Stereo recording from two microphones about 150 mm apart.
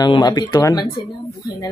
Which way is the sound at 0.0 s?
30° left (ahead or behind).